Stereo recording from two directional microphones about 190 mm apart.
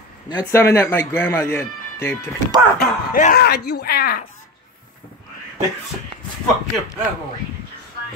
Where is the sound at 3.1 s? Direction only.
50° left (ahead or behind).